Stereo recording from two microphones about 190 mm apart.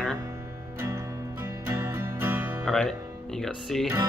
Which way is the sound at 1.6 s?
15° right (ahead or behind).